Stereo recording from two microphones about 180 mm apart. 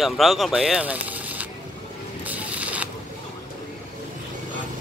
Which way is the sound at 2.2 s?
10° right (ahead or behind).